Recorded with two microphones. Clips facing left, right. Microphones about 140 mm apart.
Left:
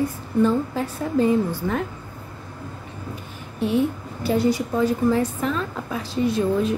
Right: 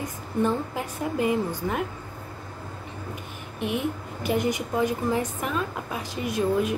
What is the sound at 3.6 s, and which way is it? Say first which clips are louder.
A woman's voice: left 6 dB; 15° right (ahead or behind).